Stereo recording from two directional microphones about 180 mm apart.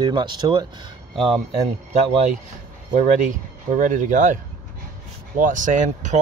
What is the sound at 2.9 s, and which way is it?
Speech, 45° right (ahead or behind).